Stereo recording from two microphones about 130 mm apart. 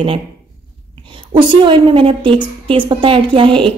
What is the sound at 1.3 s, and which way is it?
A woman's voice, 40° right (ahead or behind).